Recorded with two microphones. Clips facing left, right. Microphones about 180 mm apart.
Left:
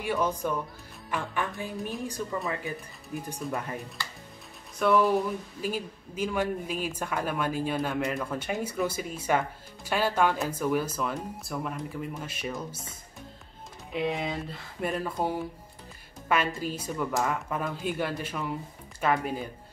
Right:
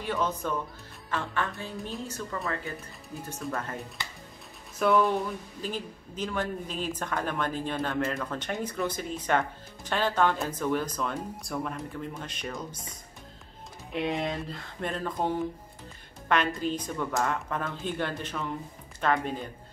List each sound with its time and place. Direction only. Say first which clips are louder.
0.0 s speech: left 2 dB; 10° left (ahead or behind)
4.0 s speech: left 1 dB; 20° right (ahead or behind)
4.7 s speech: left 1 dB; centre (ahead or behind)
13.9 s speech: even; centre (ahead or behind)